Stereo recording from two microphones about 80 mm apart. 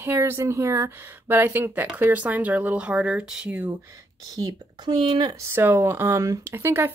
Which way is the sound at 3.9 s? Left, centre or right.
Right.